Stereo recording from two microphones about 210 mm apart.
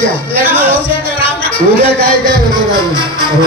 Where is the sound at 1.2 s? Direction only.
25° left (ahead or behind).